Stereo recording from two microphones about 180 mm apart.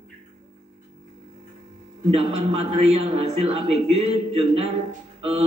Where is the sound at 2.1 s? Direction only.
35° right (ahead or behind).